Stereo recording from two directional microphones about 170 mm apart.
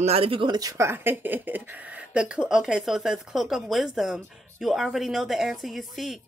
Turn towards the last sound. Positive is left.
turn(degrees=0)  # may be behind; listen again after turning